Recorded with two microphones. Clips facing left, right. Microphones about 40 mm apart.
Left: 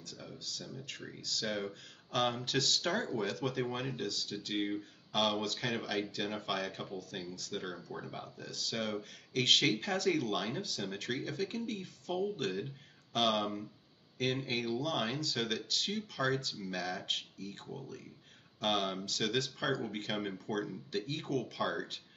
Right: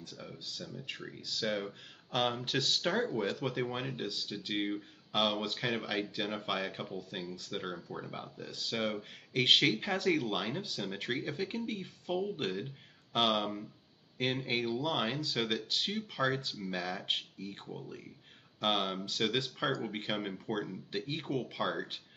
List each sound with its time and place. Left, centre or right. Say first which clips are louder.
0.0 s speech: right 1 dB; centre
18.6 s speech: right 1 dB; centre